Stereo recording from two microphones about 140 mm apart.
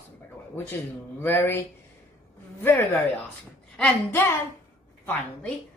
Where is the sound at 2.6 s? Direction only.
15° left (ahead or behind).